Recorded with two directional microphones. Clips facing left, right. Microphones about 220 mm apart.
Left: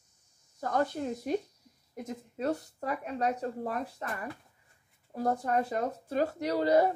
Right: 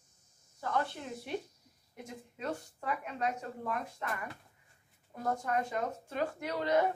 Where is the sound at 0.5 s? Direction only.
40° left (ahead or behind).